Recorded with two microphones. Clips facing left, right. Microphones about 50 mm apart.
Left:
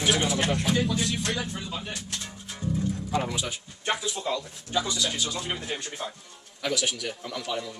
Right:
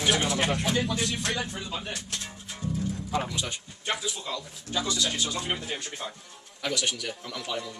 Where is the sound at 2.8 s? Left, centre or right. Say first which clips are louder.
Left 1 dB; centre.